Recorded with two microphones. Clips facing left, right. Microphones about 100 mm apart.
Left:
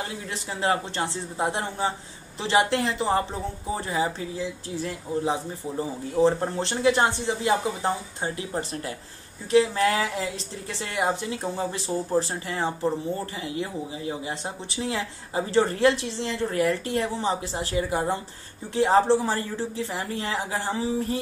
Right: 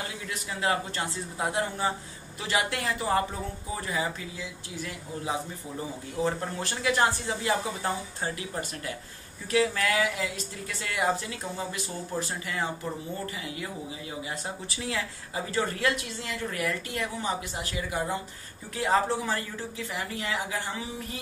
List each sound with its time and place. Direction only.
0.6 s a woman's voice: 30° left (ahead or behind)